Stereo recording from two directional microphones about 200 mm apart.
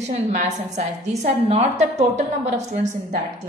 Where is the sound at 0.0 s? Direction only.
35° right (ahead or behind).